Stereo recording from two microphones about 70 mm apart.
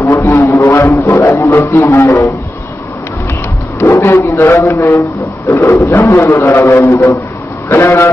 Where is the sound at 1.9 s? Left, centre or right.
Left.